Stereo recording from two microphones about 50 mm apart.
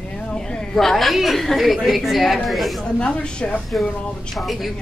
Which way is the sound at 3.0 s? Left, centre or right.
Centre.